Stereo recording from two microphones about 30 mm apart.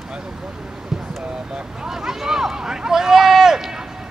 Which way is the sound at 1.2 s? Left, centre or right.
Right.